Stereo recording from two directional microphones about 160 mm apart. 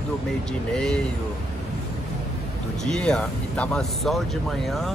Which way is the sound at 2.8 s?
5° left (ahead or behind).